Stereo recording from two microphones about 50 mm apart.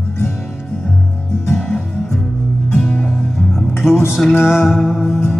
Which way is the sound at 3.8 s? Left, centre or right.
Left.